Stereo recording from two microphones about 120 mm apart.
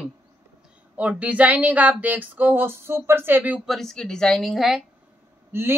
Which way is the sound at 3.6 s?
Centre (ahead or behind).